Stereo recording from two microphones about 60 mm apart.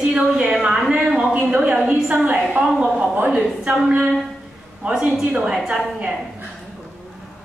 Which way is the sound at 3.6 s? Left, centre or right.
Centre.